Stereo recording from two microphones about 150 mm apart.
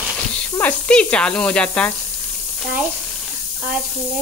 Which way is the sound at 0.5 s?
10° left (ahead or behind).